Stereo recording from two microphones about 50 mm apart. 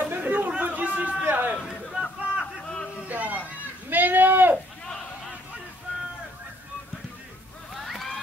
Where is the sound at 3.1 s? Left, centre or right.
Right.